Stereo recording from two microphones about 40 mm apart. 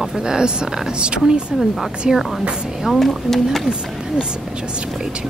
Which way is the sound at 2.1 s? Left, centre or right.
Centre.